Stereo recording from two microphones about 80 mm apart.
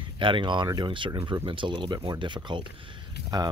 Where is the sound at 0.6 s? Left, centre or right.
Right.